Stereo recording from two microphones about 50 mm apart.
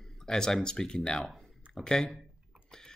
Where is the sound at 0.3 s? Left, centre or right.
Centre.